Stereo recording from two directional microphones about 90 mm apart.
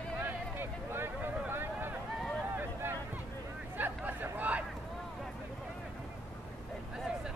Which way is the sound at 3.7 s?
20° right (ahead or behind).